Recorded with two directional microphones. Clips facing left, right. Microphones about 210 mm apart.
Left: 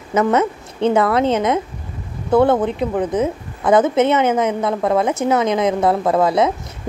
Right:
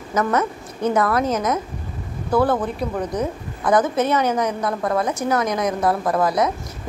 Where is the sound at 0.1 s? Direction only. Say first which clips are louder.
Left 5 dB; 25° left (ahead or behind).